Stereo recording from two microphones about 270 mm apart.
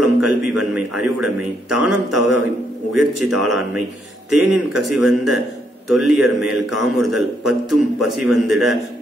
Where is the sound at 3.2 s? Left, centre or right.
Right.